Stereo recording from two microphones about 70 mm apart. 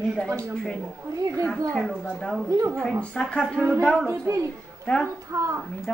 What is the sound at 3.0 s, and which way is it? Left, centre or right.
A woman's voice, centre.